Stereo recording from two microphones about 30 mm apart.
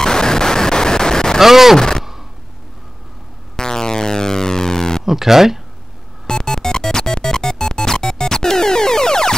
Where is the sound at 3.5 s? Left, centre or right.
Left.